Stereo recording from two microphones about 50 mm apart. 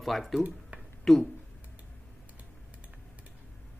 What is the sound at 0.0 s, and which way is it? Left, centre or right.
Speech, centre.